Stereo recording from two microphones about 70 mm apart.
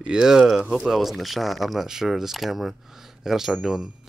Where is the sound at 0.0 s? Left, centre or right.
Centre.